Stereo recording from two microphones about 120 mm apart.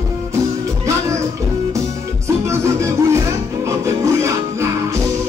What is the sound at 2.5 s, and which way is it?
Music, 25° right (ahead or behind).